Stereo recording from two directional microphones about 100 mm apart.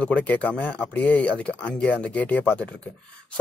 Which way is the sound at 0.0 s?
15° left (ahead or behind).